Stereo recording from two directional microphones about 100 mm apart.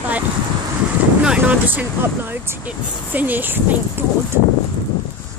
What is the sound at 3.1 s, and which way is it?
Speech, 15° right (ahead or behind).